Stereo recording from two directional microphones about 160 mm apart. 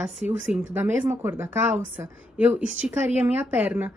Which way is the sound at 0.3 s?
10° right (ahead or behind).